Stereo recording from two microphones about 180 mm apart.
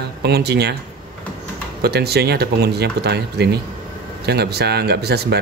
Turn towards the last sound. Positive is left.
turn(degrees=-65)  # may be behind; listen again after turning